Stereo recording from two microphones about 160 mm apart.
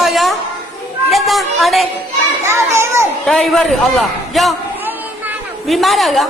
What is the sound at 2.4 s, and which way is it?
Speech, 15° right (ahead or behind).